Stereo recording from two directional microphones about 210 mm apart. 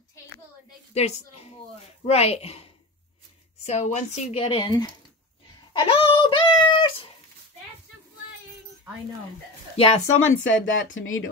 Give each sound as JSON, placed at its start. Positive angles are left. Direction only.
{"t": 0.9, "sound": "a woman's voice", "side_deg": 30}
{"t": 5.7, "sound": "cat", "side_deg": 20}
{"t": 9.8, "sound": "speech", "side_deg": 30}
{"t": 10.1, "sound": "speech", "side_deg": 70}